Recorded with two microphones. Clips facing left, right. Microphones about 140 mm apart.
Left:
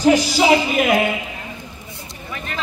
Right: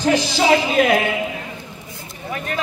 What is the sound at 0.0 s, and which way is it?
Speech, 15° left (ahead or behind).